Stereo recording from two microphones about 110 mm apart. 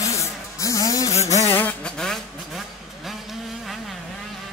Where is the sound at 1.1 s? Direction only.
85° left.